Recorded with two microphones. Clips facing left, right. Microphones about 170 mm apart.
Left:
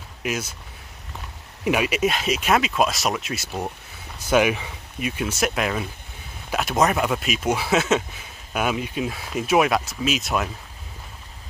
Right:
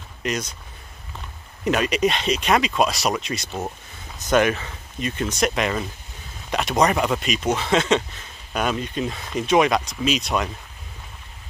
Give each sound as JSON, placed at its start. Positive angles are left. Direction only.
{"t": 0.2, "sound": "speech", "side_deg": 5}
{"t": 1.6, "sound": "speech", "side_deg": 10}